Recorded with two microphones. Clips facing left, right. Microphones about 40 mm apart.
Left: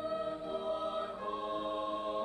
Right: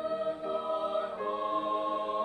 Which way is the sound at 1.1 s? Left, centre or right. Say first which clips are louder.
Right 6 dB; right.